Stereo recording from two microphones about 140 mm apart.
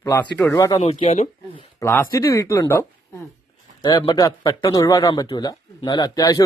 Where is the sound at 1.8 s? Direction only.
15° left (ahead or behind).